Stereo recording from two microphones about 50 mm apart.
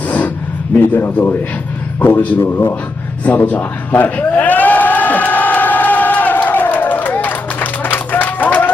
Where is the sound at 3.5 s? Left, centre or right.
Left.